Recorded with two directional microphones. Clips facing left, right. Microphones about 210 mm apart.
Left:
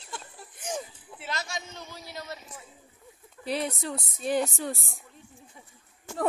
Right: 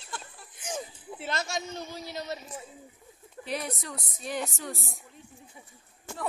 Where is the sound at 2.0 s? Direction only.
20° right (ahead or behind).